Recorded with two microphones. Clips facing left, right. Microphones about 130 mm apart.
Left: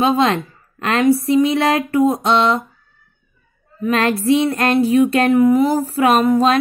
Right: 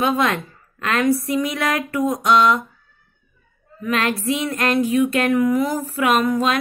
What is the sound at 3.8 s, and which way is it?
Female singing, 35° left (ahead or behind).